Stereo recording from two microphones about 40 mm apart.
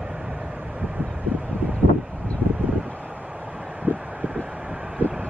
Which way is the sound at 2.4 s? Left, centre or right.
Right.